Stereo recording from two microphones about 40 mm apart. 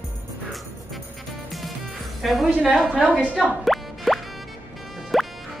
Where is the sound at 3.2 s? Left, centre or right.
Right.